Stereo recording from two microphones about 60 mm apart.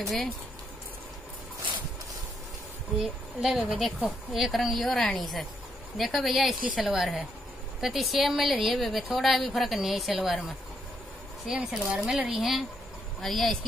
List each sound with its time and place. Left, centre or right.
3.0 s speech: centre
3.7 s a woman's voice: centre